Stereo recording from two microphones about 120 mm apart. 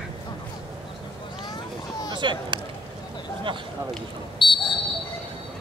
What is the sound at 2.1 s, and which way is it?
Speech, 40° right (ahead or behind).